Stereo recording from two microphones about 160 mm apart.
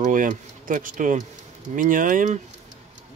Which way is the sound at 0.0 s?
55° right (ahead or behind).